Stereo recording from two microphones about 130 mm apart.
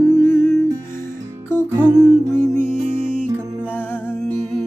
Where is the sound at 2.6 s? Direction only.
5° right (ahead or behind).